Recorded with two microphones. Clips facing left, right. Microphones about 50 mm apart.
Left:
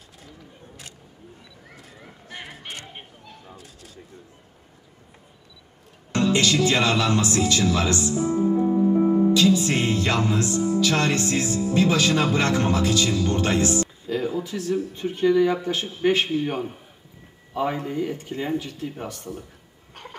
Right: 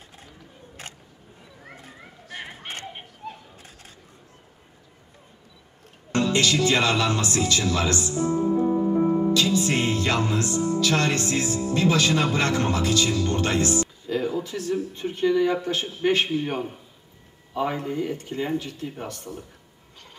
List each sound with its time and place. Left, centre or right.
3.3 s bird: right
6.1 s speech: centre